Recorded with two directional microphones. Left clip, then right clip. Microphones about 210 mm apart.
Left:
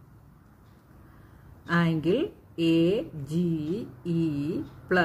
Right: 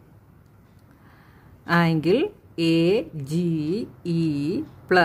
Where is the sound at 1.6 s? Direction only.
45° right (ahead or behind).